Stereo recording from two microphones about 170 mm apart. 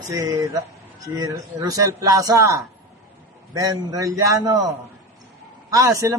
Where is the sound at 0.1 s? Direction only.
20° right (ahead or behind).